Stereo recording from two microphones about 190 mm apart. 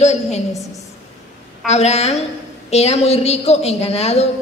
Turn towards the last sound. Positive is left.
turn(degrees=35)  # may be behind; listen again after turning